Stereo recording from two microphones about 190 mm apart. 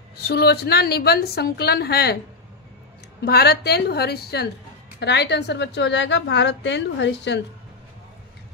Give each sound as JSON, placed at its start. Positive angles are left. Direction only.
{"t": 0.2, "sound": "a woman's voice", "side_deg": 55}
{"t": 3.2, "sound": "a woman's voice", "side_deg": 60}